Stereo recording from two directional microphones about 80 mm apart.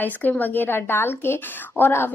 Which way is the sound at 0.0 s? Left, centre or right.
Left.